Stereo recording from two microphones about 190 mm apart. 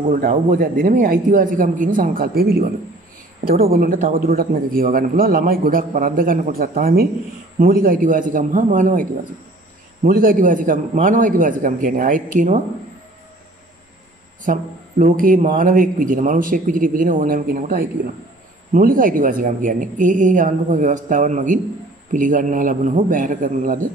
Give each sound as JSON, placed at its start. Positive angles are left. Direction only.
{"t": 0.1, "sound": "a man's voice", "side_deg": -45}
{"t": 10.0, "sound": "a man's voice", "side_deg": -45}
{"t": 14.4, "sound": "a man's voice", "side_deg": -45}